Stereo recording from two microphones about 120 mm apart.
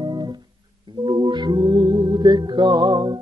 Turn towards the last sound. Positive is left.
turn(degrees=-35)  # may be behind; listen again after turning